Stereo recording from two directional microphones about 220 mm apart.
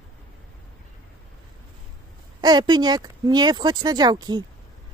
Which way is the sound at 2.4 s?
20° right (ahead or behind).